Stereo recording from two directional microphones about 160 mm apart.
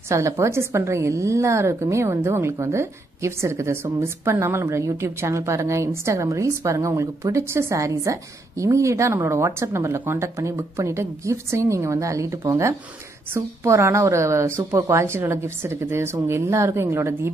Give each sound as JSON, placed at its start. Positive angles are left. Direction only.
{"t": 0.1, "sound": "a woman's voice", "side_deg": -20}